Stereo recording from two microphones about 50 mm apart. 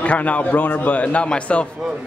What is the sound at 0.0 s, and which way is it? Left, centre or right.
A man's voice, left.